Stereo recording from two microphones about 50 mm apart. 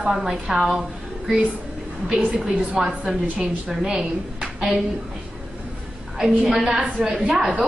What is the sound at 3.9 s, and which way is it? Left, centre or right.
Speech, centre.